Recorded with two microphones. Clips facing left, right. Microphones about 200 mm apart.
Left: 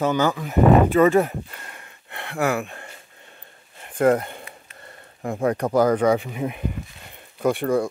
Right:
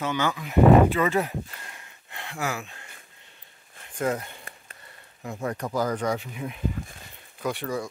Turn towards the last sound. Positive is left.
turn(degrees=55)  # may be behind; listen again after turning